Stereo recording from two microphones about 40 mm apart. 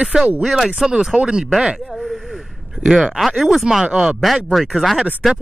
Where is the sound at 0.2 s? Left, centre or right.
Right.